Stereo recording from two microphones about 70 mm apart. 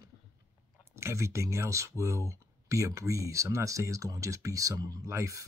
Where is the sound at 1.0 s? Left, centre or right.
Right.